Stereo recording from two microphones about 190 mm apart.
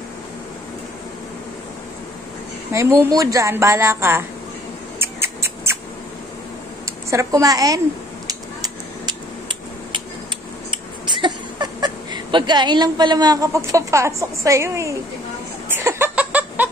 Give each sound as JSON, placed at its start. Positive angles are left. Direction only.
{"t": 2.7, "sound": "a woman's voice", "side_deg": -15}
{"t": 4.9, "sound": "mouse", "side_deg": -15}
{"t": 7.1, "sound": "a woman's voice", "side_deg": -15}
{"t": 8.3, "sound": "a sound", "side_deg": -20}
{"t": 10.7, "sound": "speech", "side_deg": -25}
{"t": 15.7, "sound": "a sound", "side_deg": -10}